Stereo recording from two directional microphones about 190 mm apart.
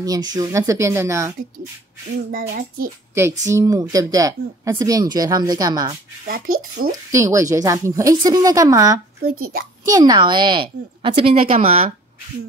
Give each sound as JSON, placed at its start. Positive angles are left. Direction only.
{"t": 0.0, "sound": "speech", "side_deg": -20}
{"t": 2.3, "sound": "child singing", "side_deg": -50}
{"t": 3.2, "sound": "speech", "side_deg": -15}
{"t": 6.2, "sound": "child singing", "side_deg": -50}
{"t": 7.1, "sound": "speech", "side_deg": -15}
{"t": 9.2, "sound": "child singing", "side_deg": -50}
{"t": 9.8, "sound": "speech", "side_deg": -20}